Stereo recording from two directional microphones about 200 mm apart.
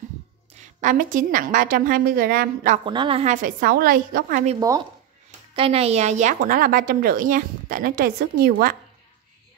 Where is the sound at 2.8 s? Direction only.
25° right (ahead or behind).